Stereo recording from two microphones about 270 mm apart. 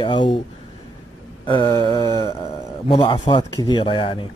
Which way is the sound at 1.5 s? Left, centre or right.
Centre.